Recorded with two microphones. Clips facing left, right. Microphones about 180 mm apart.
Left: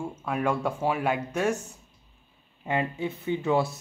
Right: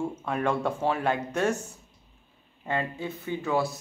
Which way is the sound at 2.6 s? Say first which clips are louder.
Left 2 dB; 15° left (ahead or behind).